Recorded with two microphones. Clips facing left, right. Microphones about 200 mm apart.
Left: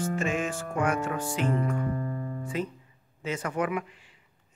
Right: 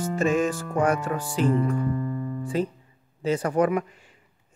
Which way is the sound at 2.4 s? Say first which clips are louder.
Right 7 dB; 35° right (ahead or behind).